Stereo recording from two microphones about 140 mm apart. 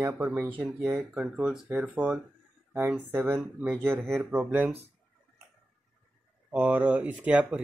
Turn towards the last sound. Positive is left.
turn(degrees=-10)  # may be behind; listen again after turning